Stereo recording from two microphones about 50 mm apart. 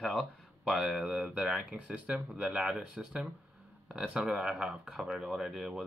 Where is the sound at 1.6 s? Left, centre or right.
Right.